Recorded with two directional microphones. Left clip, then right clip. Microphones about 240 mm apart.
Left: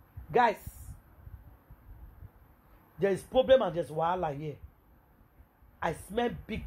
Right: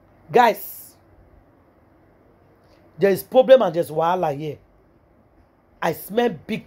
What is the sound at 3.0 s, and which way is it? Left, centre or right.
Speech, right.